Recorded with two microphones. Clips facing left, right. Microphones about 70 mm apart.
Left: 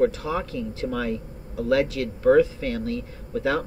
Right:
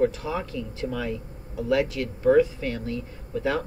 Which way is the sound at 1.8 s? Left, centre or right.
Right.